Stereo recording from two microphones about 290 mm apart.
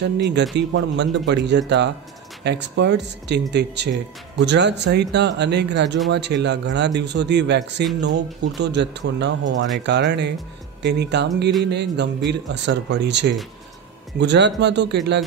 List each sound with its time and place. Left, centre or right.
0.0 s a man's voice: right